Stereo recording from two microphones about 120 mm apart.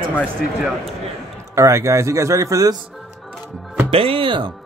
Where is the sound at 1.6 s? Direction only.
25° right (ahead or behind).